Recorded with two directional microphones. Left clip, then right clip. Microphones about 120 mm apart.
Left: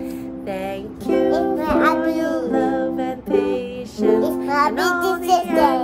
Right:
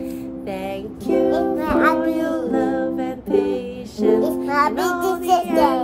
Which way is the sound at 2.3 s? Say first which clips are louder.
Left 1 dB; 45° left (ahead or behind).